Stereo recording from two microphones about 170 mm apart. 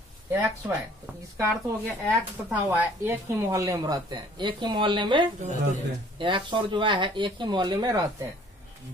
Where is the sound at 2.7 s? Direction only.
10° right (ahead or behind).